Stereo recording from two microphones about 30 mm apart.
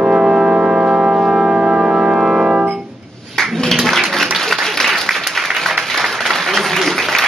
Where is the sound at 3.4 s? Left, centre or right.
Centre.